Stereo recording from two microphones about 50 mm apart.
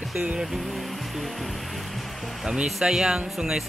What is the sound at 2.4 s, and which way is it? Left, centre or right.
Speech, centre.